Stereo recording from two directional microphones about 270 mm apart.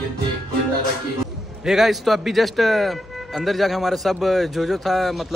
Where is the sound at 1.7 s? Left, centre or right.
Centre.